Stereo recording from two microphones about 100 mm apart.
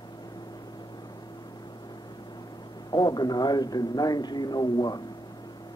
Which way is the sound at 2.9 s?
45° left (ahead or behind).